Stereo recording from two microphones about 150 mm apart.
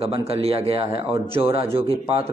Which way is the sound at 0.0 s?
40° right (ahead or behind).